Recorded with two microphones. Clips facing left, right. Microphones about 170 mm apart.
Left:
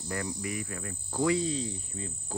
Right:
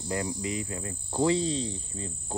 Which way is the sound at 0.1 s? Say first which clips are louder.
Right 3 dB; 20° right (ahead or behind).